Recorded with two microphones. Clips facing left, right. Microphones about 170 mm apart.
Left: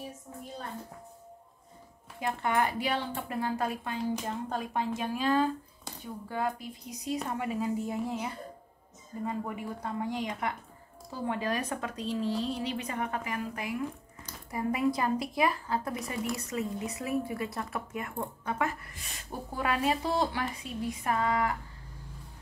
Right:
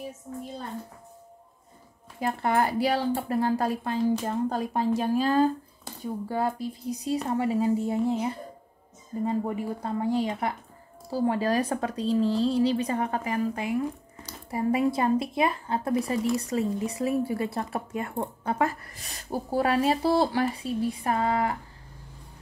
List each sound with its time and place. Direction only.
2.1 s a woman's voice: 40° right (ahead or behind)